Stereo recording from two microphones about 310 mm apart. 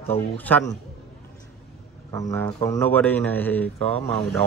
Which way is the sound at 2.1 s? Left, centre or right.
Centre.